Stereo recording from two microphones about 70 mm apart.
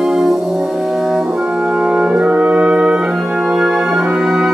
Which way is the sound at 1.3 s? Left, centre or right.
Centre.